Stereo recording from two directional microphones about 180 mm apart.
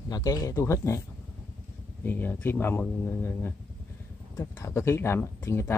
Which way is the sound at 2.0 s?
10° left (ahead or behind).